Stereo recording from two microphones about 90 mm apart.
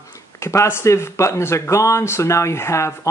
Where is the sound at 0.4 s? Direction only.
30° left (ahead or behind).